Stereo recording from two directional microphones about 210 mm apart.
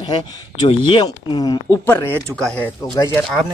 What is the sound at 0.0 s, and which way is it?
Speech, 20° left (ahead or behind).